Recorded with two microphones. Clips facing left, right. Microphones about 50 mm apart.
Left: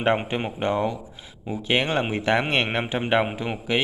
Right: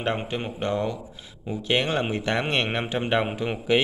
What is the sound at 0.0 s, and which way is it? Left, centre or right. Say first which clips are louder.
Speech: left 4 dB; left.